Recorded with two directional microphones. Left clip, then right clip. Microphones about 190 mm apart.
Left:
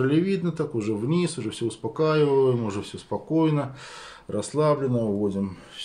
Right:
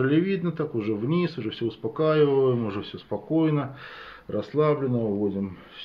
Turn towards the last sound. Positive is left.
turn(degrees=5)  # may be behind; listen again after turning